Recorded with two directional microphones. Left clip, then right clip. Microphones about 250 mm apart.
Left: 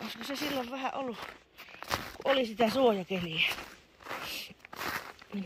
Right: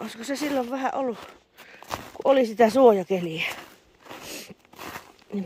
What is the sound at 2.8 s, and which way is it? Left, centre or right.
Speech, right.